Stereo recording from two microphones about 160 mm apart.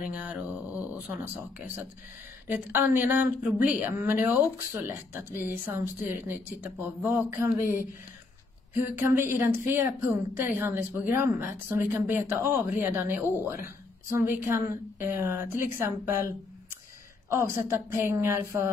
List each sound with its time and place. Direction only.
0.0 s speech: 10° right (ahead or behind)